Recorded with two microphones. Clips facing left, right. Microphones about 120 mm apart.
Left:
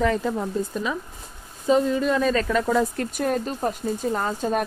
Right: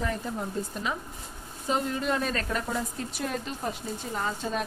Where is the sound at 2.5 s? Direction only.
90° left.